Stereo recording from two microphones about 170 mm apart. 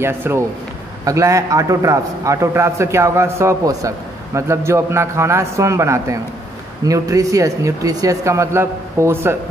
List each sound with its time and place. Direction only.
0.0 s a man's voice: 15° right (ahead or behind)